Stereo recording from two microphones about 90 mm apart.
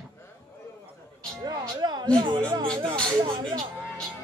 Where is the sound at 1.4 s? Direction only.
50° right (ahead or behind).